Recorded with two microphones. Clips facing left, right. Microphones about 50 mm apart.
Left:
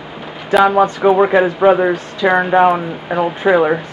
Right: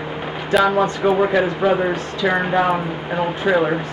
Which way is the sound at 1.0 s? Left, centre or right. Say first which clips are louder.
Left 5 dB; left.